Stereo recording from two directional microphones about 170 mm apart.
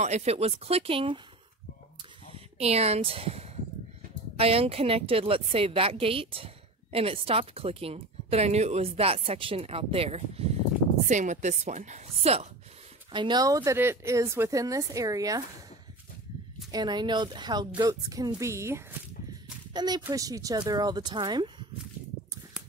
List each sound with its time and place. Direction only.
0.0 s a woman's voice: 40° right (ahead or behind)
2.3 s a woman's voice: 35° right (ahead or behind)
13.1 s speech: 25° right (ahead or behind)
16.7 s speech: 25° right (ahead or behind)